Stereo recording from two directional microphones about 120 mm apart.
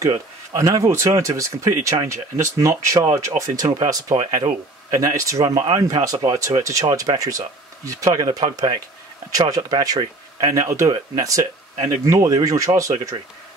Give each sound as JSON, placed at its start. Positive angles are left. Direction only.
{"t": 0.5, "sound": "speech", "side_deg": -30}